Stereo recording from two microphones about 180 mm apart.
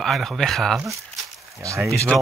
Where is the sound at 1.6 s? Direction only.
15° right (ahead or behind).